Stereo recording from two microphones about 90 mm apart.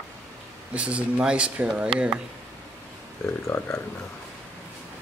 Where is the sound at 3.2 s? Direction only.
30° left (ahead or behind).